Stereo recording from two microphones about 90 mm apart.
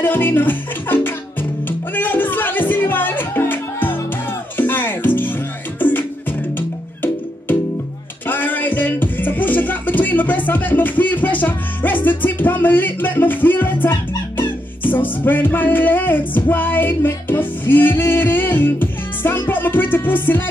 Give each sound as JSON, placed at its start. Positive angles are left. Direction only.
{"t": 0.0, "sound": "music", "side_deg": 25}
{"t": 8.3, "sound": "music", "side_deg": 20}